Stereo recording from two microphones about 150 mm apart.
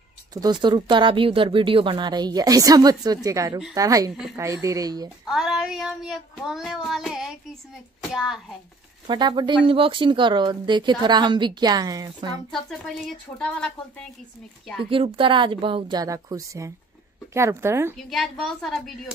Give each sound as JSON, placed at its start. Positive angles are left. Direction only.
{"t": 0.3, "sound": "speech", "side_deg": -25}
{"t": 5.2, "sound": "child singing", "side_deg": 0}
{"t": 9.0, "sound": "speech", "side_deg": -30}
{"t": 12.4, "sound": "child singing", "side_deg": 5}
{"t": 13.4, "sound": "speech", "side_deg": 5}
{"t": 14.9, "sound": "speech", "side_deg": -35}
{"t": 17.9, "sound": "child singing", "side_deg": 0}